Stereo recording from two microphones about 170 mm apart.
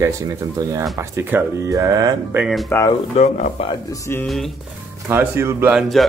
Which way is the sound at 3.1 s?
40° left (ahead or behind).